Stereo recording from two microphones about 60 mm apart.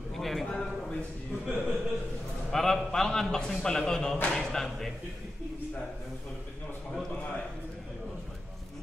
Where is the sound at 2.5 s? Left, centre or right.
Centre.